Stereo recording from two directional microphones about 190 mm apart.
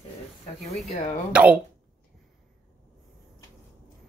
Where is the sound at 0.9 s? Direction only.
35° left (ahead or behind).